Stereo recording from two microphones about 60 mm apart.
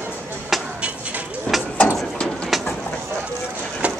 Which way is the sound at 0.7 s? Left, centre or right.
Centre.